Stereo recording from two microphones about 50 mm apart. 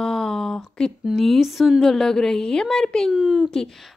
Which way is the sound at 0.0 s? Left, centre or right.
Centre.